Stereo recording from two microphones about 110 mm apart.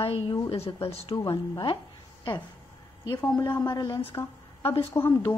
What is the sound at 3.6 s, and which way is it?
Speech, 40° left (ahead or behind).